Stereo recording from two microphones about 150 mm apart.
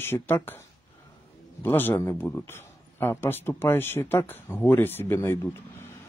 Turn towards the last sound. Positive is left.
turn(degrees=15)  # may be behind; listen again after turning